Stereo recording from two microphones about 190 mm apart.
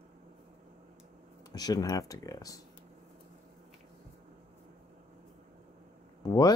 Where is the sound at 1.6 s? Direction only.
20° left (ahead or behind).